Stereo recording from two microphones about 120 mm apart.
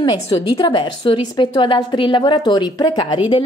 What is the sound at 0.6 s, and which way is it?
A woman's voice, 40° left (ahead or behind).